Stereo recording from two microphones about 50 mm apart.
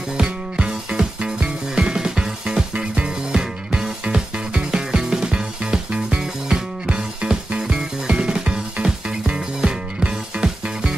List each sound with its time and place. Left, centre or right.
0.2 s music: centre